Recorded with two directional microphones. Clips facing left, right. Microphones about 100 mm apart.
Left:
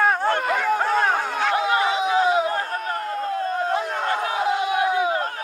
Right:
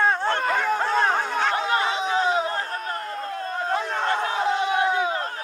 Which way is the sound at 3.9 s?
30° right (ahead or behind).